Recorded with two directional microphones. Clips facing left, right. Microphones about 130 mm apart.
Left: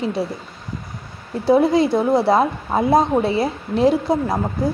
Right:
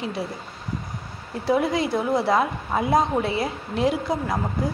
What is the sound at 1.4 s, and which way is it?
A woman's voice, 30° left (ahead or behind).